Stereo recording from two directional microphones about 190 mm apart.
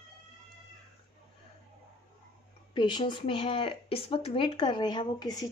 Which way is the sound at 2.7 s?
25° left (ahead or behind).